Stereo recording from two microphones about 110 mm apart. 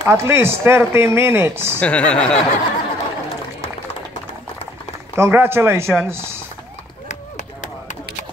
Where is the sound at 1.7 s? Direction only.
10° left (ahead or behind).